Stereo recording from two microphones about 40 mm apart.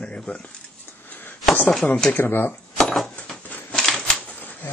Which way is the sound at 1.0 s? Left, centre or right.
Left.